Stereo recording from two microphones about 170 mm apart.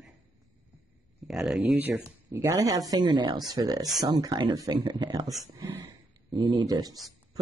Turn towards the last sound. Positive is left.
turn(degrees=-20)  # may be behind; listen again after turning